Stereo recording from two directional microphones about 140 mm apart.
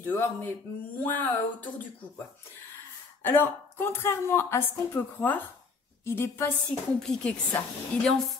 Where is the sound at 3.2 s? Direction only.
15° left (ahead or behind).